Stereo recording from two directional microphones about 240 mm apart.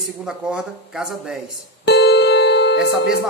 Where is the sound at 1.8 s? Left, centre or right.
Left.